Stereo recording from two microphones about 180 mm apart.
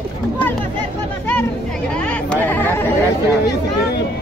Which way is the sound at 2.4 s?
10° left (ahead or behind).